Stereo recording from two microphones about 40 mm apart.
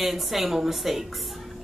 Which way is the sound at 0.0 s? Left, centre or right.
Centre.